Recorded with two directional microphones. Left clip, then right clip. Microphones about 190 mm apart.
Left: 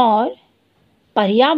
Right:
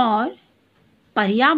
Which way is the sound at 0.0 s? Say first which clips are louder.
Left 5 dB; 20° left (ahead or behind).